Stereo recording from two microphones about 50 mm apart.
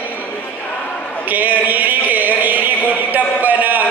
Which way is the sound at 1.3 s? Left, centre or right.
Right.